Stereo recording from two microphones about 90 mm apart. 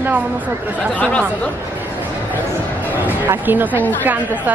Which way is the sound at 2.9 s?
20° right (ahead or behind).